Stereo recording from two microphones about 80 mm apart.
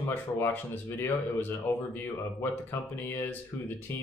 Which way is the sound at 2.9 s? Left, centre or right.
Left.